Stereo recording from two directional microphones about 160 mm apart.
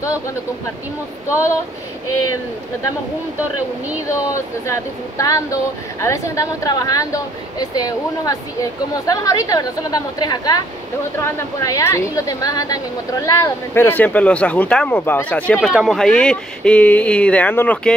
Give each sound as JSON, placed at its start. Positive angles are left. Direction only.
{"t": 4.6, "sound": "a woman's voice", "side_deg": 20}